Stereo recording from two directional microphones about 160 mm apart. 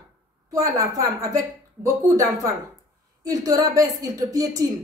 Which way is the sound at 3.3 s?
20° right (ahead or behind).